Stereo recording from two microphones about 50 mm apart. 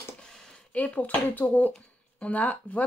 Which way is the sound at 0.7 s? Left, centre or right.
Left.